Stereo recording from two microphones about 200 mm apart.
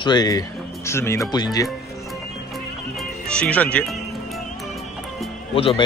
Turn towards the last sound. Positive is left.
turn(degrees=30)  # may be behind; listen again after turning